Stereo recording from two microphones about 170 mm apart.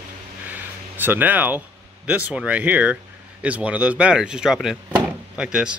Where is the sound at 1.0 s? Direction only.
10° right (ahead or behind).